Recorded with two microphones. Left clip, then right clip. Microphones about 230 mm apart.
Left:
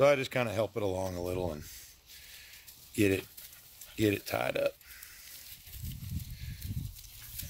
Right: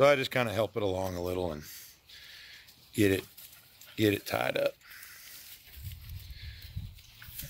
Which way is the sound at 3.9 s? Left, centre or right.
Centre.